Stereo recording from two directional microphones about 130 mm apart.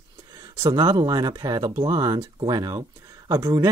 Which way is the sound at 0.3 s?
30° right (ahead or behind).